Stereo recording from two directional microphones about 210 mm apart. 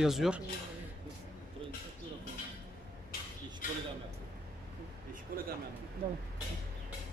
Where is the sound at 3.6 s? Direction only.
40° left (ahead or behind).